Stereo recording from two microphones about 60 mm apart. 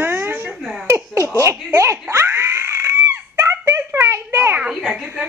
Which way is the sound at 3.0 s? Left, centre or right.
Right.